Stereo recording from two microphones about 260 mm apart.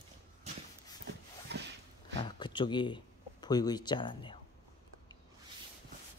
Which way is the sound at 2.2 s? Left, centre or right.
Centre.